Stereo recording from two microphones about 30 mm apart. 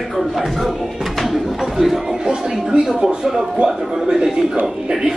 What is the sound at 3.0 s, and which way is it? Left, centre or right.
Speech, right.